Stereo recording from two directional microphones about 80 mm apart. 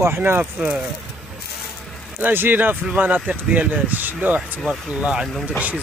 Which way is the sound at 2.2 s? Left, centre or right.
Right.